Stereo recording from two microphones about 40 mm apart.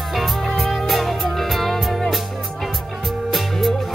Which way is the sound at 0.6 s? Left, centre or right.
Centre.